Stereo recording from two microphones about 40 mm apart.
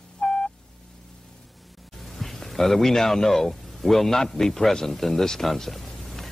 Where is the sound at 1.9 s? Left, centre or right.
Centre.